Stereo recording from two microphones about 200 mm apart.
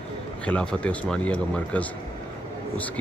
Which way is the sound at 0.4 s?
5° left (ahead or behind).